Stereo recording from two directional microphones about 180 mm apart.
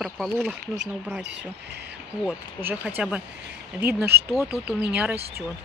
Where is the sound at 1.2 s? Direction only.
75° right (ahead or behind).